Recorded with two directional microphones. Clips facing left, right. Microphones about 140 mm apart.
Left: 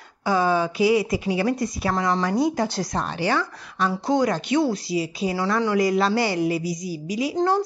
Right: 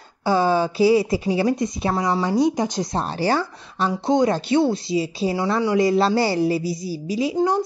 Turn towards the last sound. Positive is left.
turn(degrees=-30)  # may be behind; listen again after turning